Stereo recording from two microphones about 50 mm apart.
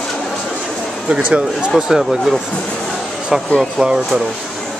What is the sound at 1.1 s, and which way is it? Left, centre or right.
Speech, right.